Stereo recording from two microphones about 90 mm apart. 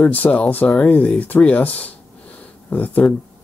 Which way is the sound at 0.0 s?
20° left (ahead or behind).